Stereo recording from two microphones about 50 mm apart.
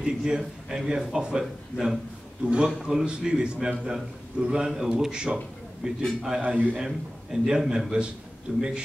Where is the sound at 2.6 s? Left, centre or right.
Centre.